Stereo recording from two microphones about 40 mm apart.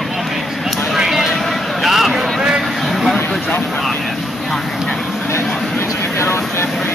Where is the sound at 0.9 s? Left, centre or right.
Centre.